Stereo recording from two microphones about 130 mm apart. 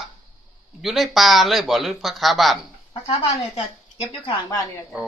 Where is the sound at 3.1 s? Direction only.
50° left (ahead or behind).